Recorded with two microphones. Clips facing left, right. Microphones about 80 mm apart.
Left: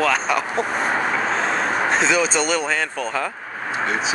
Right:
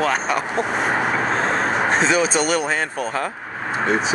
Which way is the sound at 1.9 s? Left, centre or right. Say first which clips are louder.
Right 1 dB; right.